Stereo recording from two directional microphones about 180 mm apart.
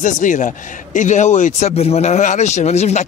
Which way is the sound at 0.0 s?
45° left (ahead or behind).